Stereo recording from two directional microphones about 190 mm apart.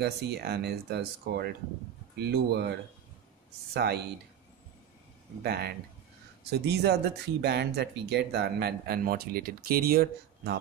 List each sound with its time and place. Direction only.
0.0 s speech: 60° right (ahead or behind)
3.7 s speech: 55° right (ahead or behind)
5.4 s speech: 60° right (ahead or behind)